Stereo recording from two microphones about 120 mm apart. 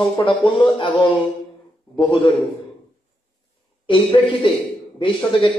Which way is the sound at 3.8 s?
45° left (ahead or behind).